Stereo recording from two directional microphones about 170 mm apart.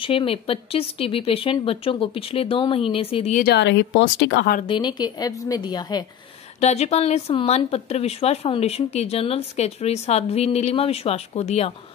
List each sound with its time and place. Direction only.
0.0 s speech: 30° left (ahead or behind)
3.5 s speech: 90° left
4.6 s a woman's voice: 30° left (ahead or behind)
6.6 s speech: 40° left (ahead or behind)